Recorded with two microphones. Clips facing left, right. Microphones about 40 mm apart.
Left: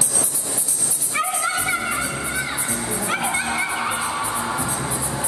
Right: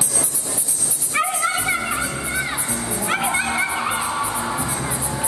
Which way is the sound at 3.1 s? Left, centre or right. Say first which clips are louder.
Right 3 dB; centre.